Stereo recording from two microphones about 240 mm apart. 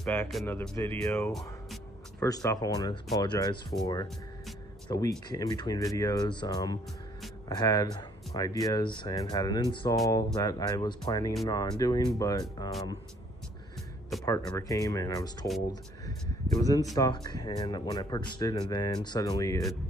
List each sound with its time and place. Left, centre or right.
0.0 s speech: centre
2.2 s speech: centre
14.2 s speech: centre